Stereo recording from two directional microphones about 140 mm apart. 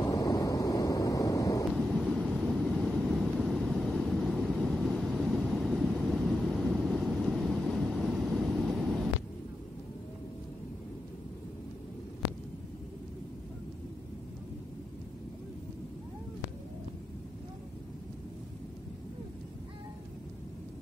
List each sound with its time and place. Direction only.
0.0 s waves: 25° left (ahead or behind)
1.7 s vehicle: centre (ahead or behind)